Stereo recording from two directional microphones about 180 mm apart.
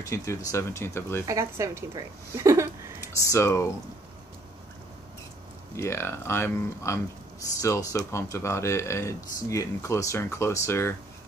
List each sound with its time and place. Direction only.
0.0 s speech: 15° left (ahead or behind)
1.2 s a woman's voice: 15° right (ahead or behind)
3.2 s speech: 15° left (ahead or behind)
5.8 s speech: 15° left (ahead or behind)